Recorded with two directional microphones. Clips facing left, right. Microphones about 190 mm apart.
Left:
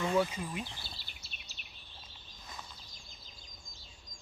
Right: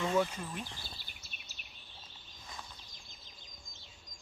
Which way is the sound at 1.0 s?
50° right (ahead or behind).